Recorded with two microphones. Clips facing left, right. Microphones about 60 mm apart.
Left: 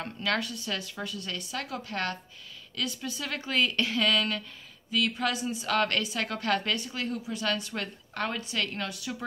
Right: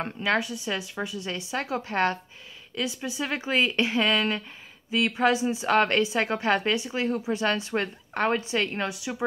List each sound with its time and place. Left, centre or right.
0.2 s a woman's voice: centre